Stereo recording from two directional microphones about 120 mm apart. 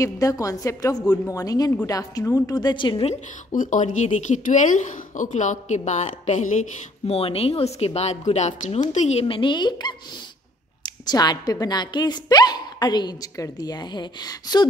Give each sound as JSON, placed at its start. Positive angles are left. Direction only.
{"t": 0.0, "sound": "a woman's voice", "side_deg": 30}
{"t": 3.1, "sound": "a woman's voice", "side_deg": 90}
{"t": 7.1, "sound": "speech", "side_deg": 55}
{"t": 9.2, "sound": "a woman's voice", "side_deg": 45}